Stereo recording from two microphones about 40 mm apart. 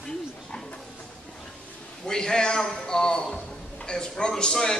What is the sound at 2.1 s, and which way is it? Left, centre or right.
A man's voice, centre.